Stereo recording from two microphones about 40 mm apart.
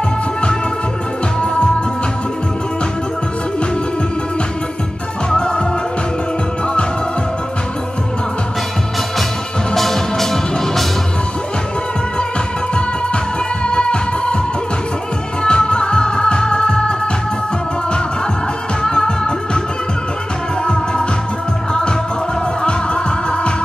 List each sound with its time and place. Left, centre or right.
1.4 s music: left
5.3 s music: centre
9.8 s music: centre
13.7 s music: left
15.4 s music: left
18.8 s music: centre
20.6 s music: left
22.6 s music: left